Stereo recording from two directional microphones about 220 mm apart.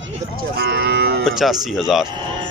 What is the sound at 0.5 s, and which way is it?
Cattle, 45° right (ahead or behind).